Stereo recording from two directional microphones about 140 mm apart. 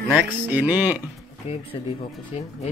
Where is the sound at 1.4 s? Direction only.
50° left (ahead or behind).